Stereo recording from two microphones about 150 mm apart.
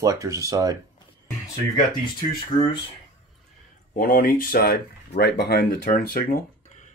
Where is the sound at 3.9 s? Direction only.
70° left (ahead or behind).